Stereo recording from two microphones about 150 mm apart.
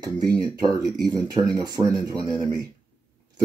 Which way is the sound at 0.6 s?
25° right (ahead or behind).